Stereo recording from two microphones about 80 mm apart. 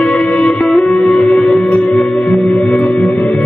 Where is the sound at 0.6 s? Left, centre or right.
Centre.